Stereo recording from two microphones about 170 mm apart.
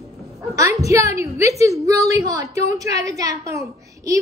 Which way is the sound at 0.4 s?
20° right (ahead or behind).